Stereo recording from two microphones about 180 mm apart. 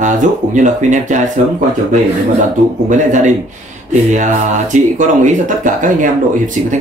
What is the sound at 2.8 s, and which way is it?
Speech, 45° right (ahead or behind).